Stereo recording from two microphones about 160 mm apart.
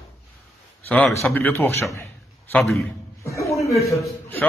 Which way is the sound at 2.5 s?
Centre (ahead or behind).